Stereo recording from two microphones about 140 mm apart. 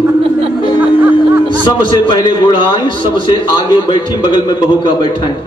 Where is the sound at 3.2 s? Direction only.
35° left (ahead or behind).